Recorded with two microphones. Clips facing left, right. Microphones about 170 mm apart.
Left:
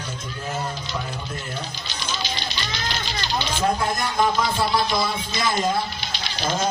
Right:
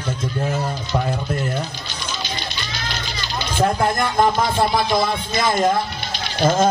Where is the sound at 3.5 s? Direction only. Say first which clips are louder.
Right 6 dB; 55° right (ahead or behind).